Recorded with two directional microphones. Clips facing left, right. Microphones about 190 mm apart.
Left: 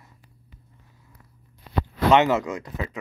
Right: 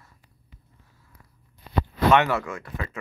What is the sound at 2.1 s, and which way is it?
Speech, 20° left (ahead or behind).